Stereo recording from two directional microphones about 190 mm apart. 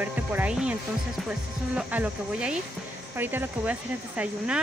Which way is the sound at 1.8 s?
5° right (ahead or behind).